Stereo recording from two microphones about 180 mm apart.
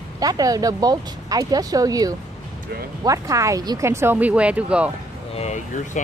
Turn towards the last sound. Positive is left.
turn(degrees=35)  # may be behind; listen again after turning